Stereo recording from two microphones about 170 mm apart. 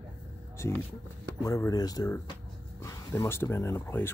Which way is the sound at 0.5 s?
15° left (ahead or behind).